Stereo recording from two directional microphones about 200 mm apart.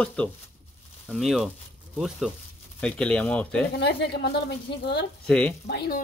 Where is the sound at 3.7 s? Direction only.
55° left (ahead or behind).